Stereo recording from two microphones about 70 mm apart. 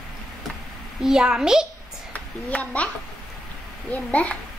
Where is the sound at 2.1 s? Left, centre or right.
Left.